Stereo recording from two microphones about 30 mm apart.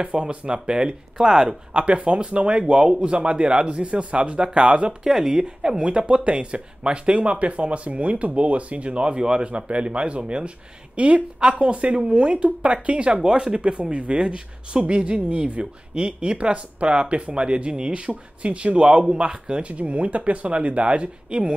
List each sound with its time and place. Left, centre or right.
0.0 s speech: right
1.1 s speech: right
1.7 s speech: right
2.7 s speech: right
5.0 s speech: centre
5.3 s speech: right
13.2 s speech: right
13.6 s speech: right
19.6 s speech: right